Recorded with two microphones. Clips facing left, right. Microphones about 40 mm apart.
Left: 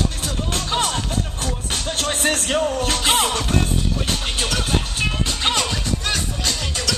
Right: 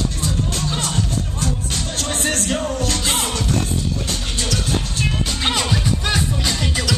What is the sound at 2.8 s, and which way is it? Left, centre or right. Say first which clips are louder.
Music: left 3 dB; left.